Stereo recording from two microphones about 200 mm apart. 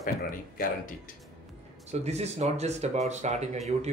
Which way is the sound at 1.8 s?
35° right (ahead or behind).